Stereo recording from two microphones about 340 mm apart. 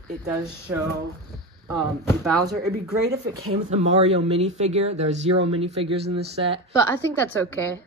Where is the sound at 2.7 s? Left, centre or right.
Right.